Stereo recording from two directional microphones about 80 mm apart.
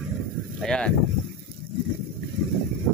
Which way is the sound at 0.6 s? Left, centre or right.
Centre.